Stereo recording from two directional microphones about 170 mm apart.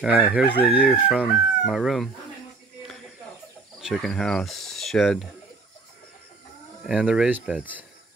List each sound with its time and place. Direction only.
0.0 s speech: 5° right (ahead or behind)
0.4 s crowing: 65° left (ahead or behind)
0.7 s chicken: 5° right (ahead or behind)
3.8 s speech: centre (ahead or behind)
6.9 s speech: 5° right (ahead or behind)